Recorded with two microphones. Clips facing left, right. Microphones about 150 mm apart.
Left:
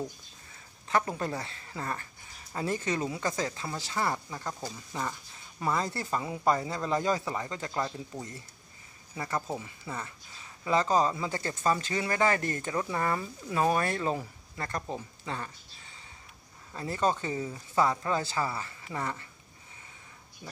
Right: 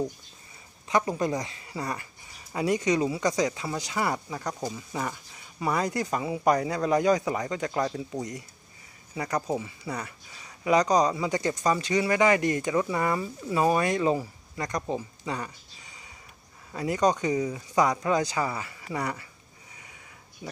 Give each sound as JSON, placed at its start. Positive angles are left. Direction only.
{"t": 0.8, "sound": "speech", "side_deg": -10}
{"t": 16.7, "sound": "speech", "side_deg": -15}